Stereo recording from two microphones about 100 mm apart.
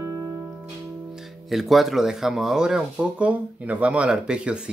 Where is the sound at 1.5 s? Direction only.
Centre (ahead or behind).